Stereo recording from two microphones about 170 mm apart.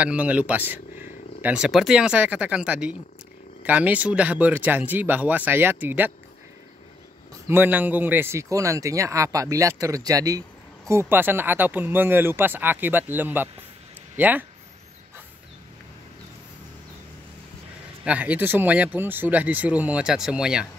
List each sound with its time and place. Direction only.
0.0 s speech: 10° right (ahead or behind)
7.4 s speech: 10° right (ahead or behind)
18.0 s speech: 10° right (ahead or behind)